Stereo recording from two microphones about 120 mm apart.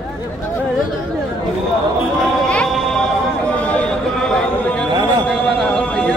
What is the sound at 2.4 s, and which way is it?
Music, 10° left (ahead or behind).